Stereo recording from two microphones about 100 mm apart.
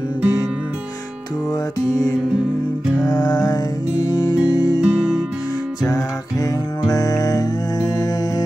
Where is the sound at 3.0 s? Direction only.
45° left (ahead or behind).